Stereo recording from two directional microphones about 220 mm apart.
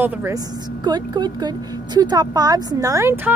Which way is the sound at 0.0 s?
10° right (ahead or behind).